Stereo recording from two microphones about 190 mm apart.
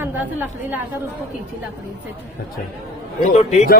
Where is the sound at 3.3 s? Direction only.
35° left (ahead or behind).